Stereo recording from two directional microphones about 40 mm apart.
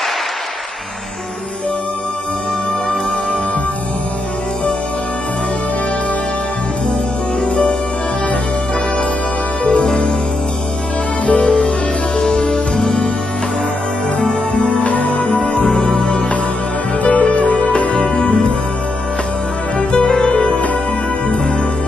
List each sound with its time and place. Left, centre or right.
6.9 s music: centre
9.6 s music: left
11.2 s music: left
14.2 s music: centre
14.8 s music: left
15.2 s music: centre
17.0 s music: left
17.9 s music: centre
19.8 s music: centre
20.2 s music: left